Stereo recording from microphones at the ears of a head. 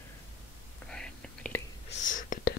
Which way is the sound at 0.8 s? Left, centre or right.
Centre.